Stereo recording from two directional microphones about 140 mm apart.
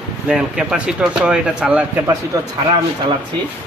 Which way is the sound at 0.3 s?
5° right (ahead or behind).